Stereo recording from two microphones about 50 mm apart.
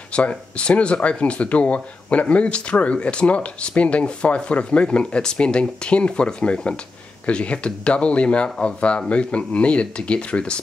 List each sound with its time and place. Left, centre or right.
0.1 s speech: left